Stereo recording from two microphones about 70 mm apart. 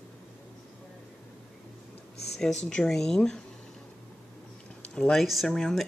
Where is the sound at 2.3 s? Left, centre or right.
Centre.